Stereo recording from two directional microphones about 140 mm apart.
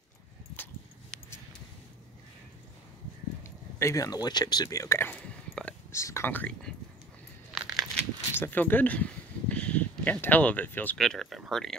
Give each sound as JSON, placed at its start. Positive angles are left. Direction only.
{"t": 3.4, "sound": "speech", "side_deg": 20}
{"t": 5.9, "sound": "speech", "side_deg": 20}
{"t": 7.5, "sound": "a sound", "side_deg": 0}
{"t": 8.4, "sound": "speech", "side_deg": 15}